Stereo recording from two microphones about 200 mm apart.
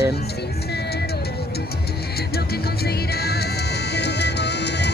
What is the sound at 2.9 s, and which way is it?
Music, 55° left (ahead or behind).